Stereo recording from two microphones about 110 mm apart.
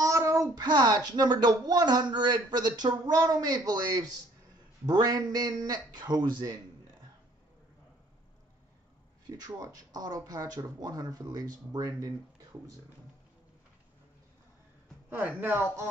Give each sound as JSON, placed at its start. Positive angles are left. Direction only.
{"t": 0.0, "sound": "child singing", "side_deg": -30}
{"t": 0.7, "sound": "speech", "side_deg": -40}
{"t": 9.3, "sound": "speech", "side_deg": -35}
{"t": 15.0, "sound": "speech", "side_deg": -15}